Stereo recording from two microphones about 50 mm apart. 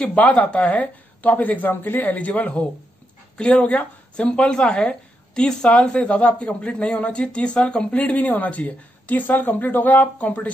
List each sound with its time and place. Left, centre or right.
0.1 s a woman's voice: left